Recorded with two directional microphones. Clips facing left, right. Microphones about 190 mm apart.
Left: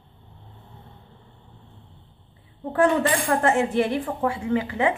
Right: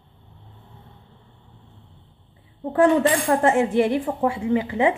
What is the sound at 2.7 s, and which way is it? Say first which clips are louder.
Speech: right 3 dB; 20° right (ahead or behind).